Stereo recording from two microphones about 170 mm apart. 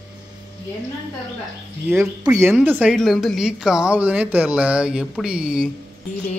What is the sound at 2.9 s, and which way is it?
Speech, centre (ahead or behind).